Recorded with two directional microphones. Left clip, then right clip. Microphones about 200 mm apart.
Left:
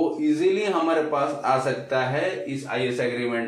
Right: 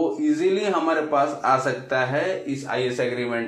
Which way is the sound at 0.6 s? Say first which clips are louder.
Even; 25° right (ahead or behind).